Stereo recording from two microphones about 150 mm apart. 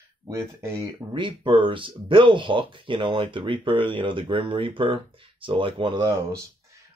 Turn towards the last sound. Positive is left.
turn(degrees=-30)  # may be behind; listen again after turning